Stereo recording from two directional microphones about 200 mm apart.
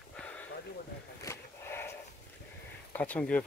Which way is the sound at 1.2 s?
10° left (ahead or behind).